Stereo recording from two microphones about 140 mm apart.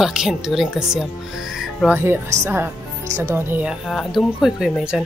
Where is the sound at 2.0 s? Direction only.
20° right (ahead or behind).